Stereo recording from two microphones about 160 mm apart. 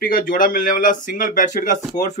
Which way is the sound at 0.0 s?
60° left (ahead or behind).